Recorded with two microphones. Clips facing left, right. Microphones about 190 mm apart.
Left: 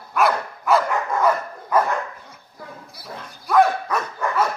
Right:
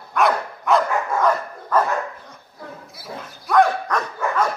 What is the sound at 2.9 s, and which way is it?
Dog, centre (ahead or behind).